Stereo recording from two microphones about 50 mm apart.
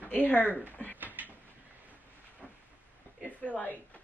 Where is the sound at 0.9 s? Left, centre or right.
Right.